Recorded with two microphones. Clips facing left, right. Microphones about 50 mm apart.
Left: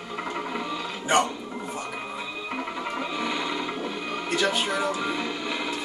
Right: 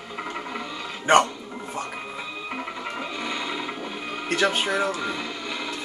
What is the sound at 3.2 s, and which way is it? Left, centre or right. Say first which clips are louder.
Music: even; centre.